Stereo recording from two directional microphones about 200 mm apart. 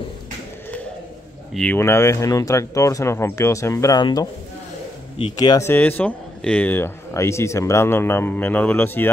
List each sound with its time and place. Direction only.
1.5 s speech: 5° left (ahead or behind)